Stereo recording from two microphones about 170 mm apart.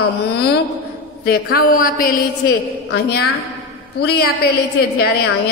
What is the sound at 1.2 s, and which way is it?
A woman's voice, 60° left (ahead or behind).